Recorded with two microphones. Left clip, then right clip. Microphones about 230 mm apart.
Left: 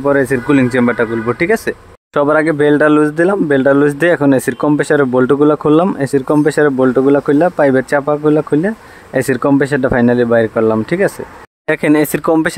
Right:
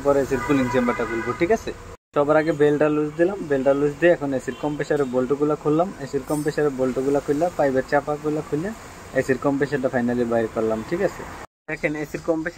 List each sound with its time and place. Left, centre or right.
0.1 s speech: left